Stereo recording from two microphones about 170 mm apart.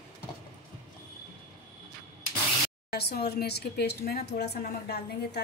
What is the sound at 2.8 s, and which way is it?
A woman's voice, 70° left (ahead or behind).